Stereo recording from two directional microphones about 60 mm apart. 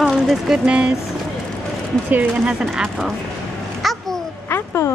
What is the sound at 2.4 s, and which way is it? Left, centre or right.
Speech, centre.